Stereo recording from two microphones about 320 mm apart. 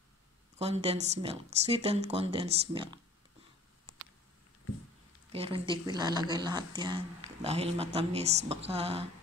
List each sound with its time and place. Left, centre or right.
0.6 s speech: centre
5.3 s a woman's voice: centre